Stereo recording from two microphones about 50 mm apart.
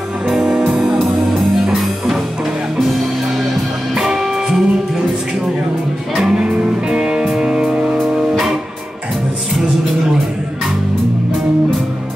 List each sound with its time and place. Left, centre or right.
0.3 s music: centre
3.9 s music: centre
6.1 s music: centre